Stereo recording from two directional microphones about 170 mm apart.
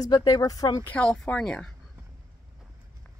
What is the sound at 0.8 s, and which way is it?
Speech, 5° left (ahead or behind).